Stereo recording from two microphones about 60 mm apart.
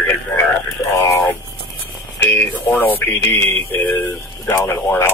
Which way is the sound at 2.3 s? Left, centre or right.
Left.